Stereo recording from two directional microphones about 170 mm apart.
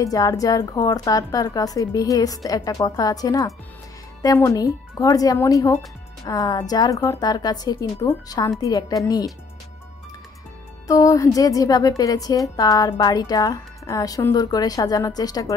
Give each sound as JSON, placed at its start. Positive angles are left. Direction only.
{"t": 0.0, "sound": "speech", "side_deg": 20}
{"t": 10.9, "sound": "speech", "side_deg": 20}